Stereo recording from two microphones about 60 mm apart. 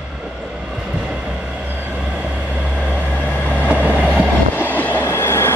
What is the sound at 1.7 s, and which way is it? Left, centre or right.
Vehicle, right.